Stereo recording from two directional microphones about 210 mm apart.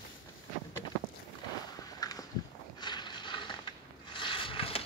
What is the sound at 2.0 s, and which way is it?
Walk, 20° left (ahead or behind).